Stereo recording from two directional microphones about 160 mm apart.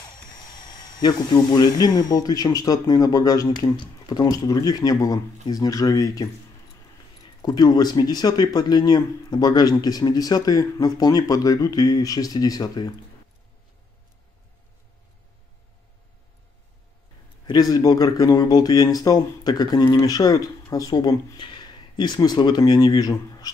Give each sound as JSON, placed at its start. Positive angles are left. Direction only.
{"t": 0.7, "sound": "speech", "side_deg": 25}
{"t": 7.4, "sound": "speech", "side_deg": 25}
{"t": 17.5, "sound": "speech", "side_deg": 25}